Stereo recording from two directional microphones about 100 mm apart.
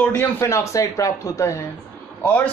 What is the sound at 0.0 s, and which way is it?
Speech, 20° left (ahead or behind).